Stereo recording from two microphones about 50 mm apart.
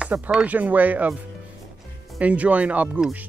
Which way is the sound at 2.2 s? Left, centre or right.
Right.